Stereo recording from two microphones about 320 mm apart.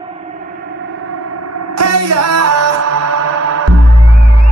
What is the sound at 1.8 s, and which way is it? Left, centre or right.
Music, right.